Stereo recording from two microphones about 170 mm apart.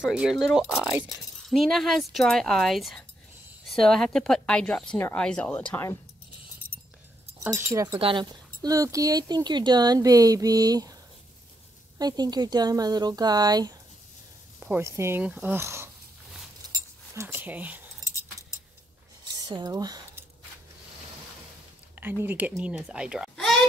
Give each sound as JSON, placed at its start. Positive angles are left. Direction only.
{"t": 0.0, "sound": "speech", "side_deg": -5}
{"t": 7.4, "sound": "speech", "side_deg": -15}
{"t": 8.0, "sound": "speech", "side_deg": -30}
{"t": 12.0, "sound": "speech", "side_deg": -25}
{"t": 17.1, "sound": "speech", "side_deg": -15}
{"t": 19.3, "sound": "squish", "side_deg": -25}
{"t": 21.9, "sound": "speech", "side_deg": -10}